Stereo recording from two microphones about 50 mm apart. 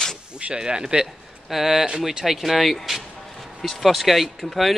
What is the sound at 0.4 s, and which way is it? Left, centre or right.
Speech, centre.